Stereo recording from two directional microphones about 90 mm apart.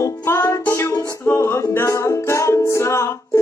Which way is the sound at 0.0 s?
30° left (ahead or behind).